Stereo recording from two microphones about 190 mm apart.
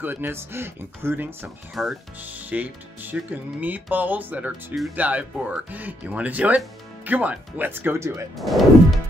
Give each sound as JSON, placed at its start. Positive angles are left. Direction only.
{"t": 0.0, "sound": "speech", "side_deg": -10}
{"t": 8.4, "sound": "speech", "side_deg": 0}